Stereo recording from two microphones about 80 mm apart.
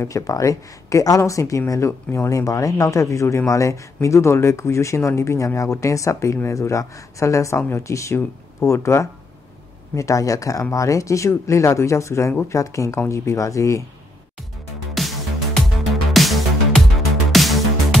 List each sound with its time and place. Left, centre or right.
0.0 s speech: left
15.0 s music: centre